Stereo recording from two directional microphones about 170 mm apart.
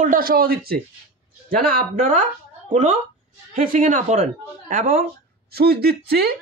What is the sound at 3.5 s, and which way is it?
Speech, 55° right (ahead or behind).